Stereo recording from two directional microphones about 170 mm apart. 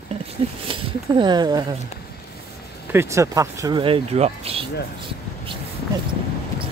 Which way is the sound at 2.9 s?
15° right (ahead or behind).